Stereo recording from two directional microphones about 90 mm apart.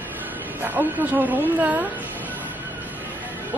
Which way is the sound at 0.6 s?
20° right (ahead or behind).